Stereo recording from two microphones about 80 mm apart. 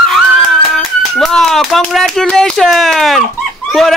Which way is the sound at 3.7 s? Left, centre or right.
Centre.